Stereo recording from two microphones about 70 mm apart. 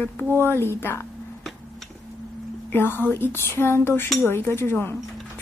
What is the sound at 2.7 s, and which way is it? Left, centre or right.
Speech, left.